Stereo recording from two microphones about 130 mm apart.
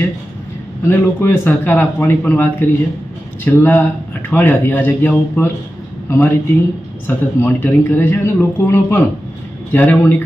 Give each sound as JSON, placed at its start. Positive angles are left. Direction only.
{"t": 0.8, "sound": "a man's voice", "side_deg": 20}